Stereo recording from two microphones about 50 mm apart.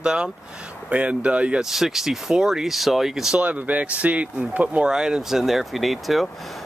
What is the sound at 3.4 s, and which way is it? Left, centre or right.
Speech, right.